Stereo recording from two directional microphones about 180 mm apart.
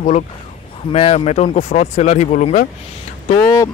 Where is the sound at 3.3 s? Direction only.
20° left (ahead or behind).